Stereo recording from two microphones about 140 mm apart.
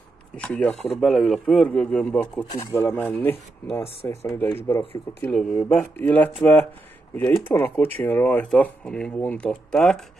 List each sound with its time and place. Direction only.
0.4 s speech: 10° left (ahead or behind)
2.6 s speech: 20° left (ahead or behind)
5.3 s speech: centre (ahead or behind)